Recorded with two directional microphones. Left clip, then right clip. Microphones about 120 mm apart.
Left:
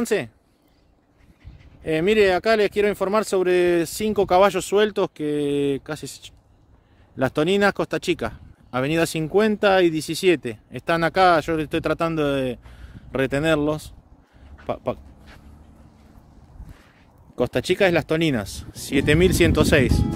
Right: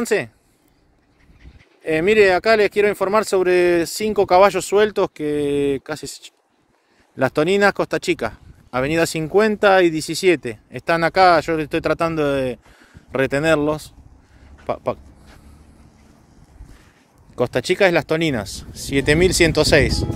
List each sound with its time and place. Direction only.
0.0 s speech: 20° left (ahead or behind)
1.9 s speech: 20° left (ahead or behind)
17.4 s speech: 30° left (ahead or behind)